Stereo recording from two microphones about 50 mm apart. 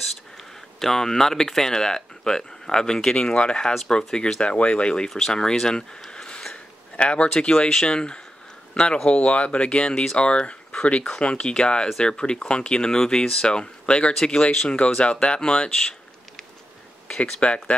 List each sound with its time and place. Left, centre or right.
0.7 s speech: centre
17.4 s speech: left